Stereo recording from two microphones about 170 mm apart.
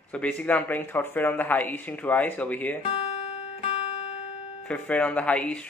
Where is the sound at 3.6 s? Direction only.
40° left (ahead or behind).